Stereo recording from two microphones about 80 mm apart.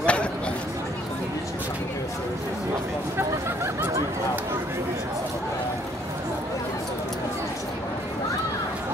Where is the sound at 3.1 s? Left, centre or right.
Right.